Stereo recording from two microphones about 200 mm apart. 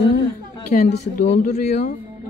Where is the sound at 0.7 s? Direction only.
35° left (ahead or behind).